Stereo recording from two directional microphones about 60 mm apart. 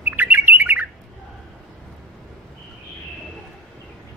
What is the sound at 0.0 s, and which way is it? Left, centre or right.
Bird, right.